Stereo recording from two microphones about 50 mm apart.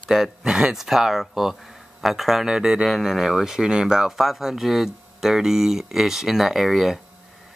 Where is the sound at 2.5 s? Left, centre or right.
Centre.